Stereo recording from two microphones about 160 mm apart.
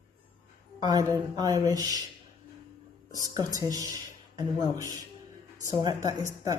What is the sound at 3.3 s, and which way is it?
Speech, 25° right (ahead or behind).